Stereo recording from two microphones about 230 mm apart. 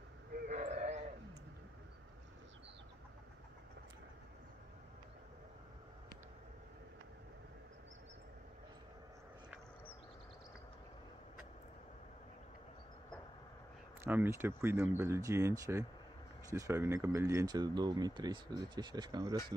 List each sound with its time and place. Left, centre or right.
0.5 s sheep: right
14.0 s speech: centre